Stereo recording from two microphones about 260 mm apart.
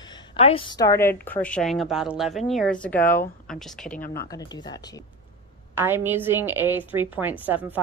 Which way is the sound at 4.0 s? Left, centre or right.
Left.